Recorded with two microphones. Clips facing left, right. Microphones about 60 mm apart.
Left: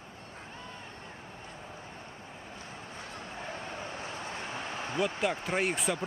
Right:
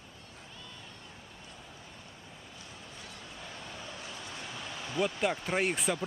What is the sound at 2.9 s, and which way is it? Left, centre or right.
Waves, left.